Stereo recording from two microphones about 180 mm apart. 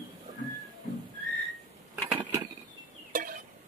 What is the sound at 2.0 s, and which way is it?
Mechanisms, 10° right (ahead or behind).